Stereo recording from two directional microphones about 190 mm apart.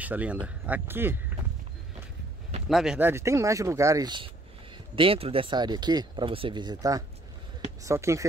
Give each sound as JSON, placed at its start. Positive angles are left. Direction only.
{"t": 0.0, "sound": "speech", "side_deg": -10}
{"t": 2.7, "sound": "speech", "side_deg": -5}